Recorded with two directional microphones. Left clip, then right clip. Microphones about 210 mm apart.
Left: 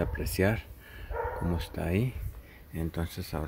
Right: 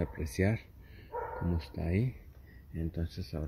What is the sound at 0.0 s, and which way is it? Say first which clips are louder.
Speech: left 5 dB; 60° left (ahead or behind).